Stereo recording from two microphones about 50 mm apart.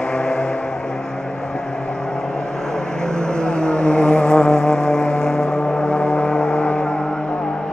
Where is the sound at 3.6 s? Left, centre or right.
Centre.